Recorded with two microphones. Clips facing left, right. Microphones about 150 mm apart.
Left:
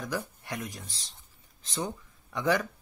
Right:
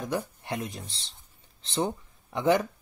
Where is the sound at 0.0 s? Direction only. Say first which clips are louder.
Right 3 dB; 20° right (ahead or behind).